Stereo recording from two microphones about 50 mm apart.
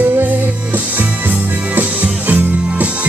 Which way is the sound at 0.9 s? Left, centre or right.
Right.